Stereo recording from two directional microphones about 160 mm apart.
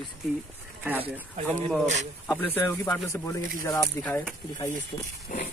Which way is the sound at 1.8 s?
50° right (ahead or behind).